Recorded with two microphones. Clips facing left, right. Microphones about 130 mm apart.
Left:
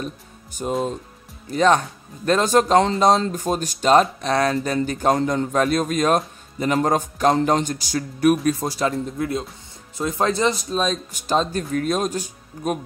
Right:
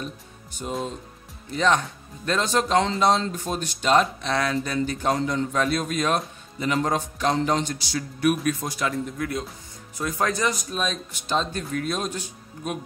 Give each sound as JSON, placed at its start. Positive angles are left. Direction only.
{"t": 0.6, "sound": "a man's voice", "side_deg": 50}